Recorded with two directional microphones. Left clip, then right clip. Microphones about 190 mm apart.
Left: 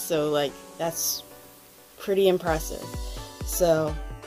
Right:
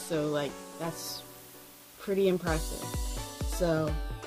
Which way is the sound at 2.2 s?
5° right (ahead or behind).